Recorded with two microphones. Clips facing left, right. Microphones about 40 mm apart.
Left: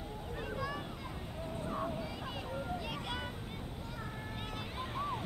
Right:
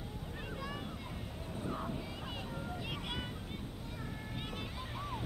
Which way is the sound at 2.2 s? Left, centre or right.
Right.